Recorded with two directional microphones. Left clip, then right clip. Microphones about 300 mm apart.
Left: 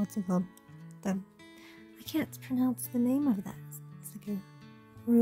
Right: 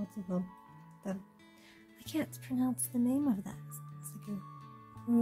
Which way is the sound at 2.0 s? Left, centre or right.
Centre.